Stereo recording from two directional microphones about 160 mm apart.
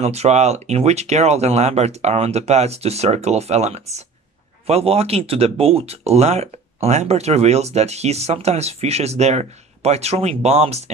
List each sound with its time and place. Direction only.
0.0 s speech: 45° right (ahead or behind)